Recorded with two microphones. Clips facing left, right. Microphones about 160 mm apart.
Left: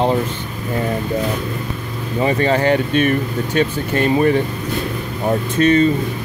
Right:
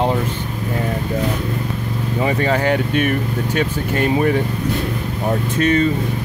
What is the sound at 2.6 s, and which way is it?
Speech, 10° right (ahead or behind).